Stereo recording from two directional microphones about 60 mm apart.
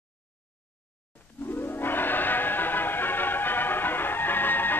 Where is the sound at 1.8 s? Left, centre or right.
Left.